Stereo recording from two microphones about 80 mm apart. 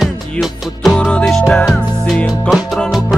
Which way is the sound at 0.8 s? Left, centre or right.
Centre.